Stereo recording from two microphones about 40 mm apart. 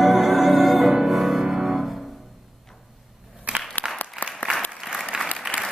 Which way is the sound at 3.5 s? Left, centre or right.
Right.